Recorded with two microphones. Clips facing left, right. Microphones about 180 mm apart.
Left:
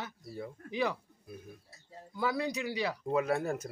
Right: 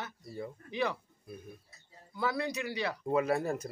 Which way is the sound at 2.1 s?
15° left (ahead or behind).